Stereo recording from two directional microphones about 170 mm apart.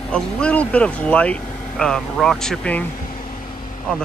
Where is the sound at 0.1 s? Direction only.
5° left (ahead or behind).